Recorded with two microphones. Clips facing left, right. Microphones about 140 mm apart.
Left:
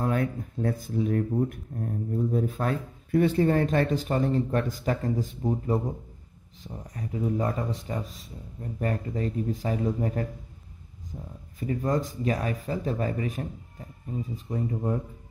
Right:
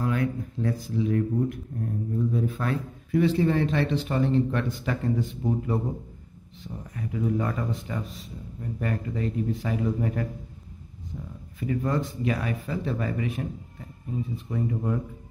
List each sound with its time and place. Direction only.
0.0 s speech: 50° left (ahead or behind)
6.6 s speech: 35° left (ahead or behind)
11.6 s speech: 35° left (ahead or behind)